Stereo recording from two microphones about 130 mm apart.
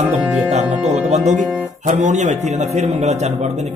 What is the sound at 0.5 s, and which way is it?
Music, 60° right (ahead or behind).